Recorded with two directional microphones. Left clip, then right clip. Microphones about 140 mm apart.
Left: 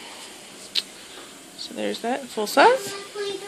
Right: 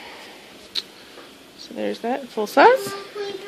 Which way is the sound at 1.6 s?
10° right (ahead or behind).